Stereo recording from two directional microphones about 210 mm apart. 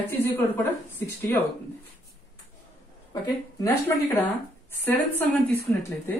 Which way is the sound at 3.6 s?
15° left (ahead or behind).